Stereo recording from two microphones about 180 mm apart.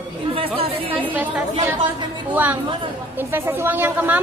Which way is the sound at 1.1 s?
10° right (ahead or behind).